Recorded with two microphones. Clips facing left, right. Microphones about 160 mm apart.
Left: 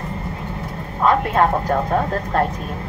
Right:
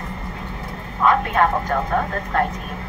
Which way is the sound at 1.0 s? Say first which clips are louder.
Left 1 dB; 30° left (ahead or behind).